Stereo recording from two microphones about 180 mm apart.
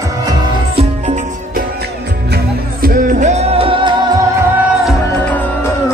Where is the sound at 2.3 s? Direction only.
55° right (ahead or behind); by 4.1 s 25° right (ahead or behind).